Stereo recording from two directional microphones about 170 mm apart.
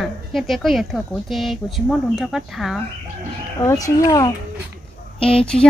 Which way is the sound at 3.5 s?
20° left (ahead or behind).